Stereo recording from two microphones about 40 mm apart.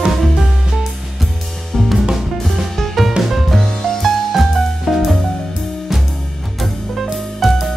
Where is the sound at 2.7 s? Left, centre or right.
Centre.